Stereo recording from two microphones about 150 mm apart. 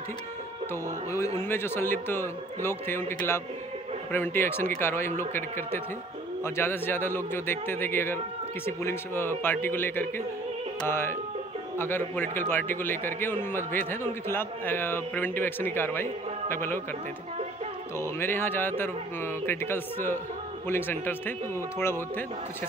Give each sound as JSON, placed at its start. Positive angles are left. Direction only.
{"t": 1.4, "sound": "a man's voice", "side_deg": 15}
{"t": 6.4, "sound": "a man's voice", "side_deg": 15}
{"t": 17.9, "sound": "a man's voice", "side_deg": 15}